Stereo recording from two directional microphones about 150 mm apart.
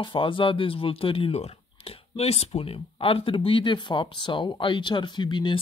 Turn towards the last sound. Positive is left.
turn(degrees=30)  # may be behind; listen again after turning